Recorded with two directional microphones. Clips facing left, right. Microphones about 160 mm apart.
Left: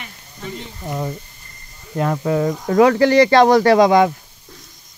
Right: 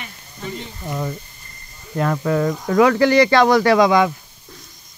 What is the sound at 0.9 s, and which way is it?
Speech, 25° left (ahead or behind).